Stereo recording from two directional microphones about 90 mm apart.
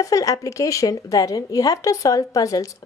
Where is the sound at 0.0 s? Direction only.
40° left (ahead or behind).